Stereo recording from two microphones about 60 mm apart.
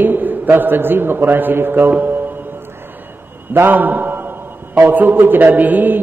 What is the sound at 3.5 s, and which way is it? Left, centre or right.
A man's voice, right.